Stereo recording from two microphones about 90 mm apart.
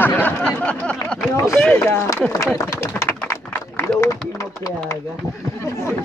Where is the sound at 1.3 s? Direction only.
35° left (ahead or behind).